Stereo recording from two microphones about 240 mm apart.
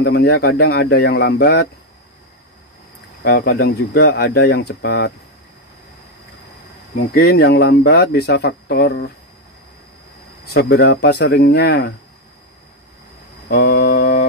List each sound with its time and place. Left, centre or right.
0.0 s speech: left
3.3 s speech: left
7.2 s speech: left
10.4 s speech: left
13.5 s mantra: left